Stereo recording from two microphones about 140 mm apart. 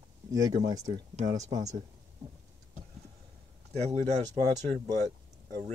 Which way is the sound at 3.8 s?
55° right (ahead or behind).